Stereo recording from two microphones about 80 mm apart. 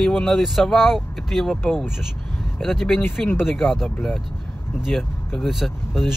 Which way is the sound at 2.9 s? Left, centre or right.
Left.